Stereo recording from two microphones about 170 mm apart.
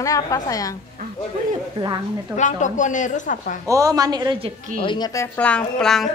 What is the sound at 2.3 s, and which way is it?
A woman's voice, 45° left (ahead or behind).